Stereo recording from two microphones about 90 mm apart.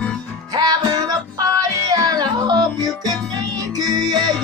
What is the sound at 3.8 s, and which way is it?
Music, 50° right (ahead or behind).